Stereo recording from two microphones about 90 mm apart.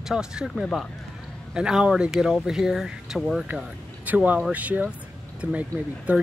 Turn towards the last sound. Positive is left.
turn(degrees=-15)  # may be behind; listen again after turning